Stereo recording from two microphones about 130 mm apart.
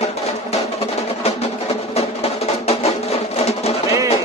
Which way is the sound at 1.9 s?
55° left (ahead or behind).